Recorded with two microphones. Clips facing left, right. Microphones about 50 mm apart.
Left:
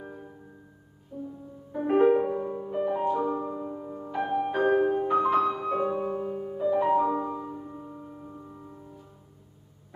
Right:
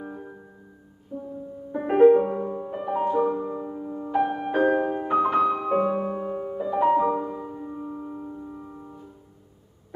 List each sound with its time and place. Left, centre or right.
0.0 s music: centre
1.1 s music: centre
1.7 s music: centre
5.0 s music: centre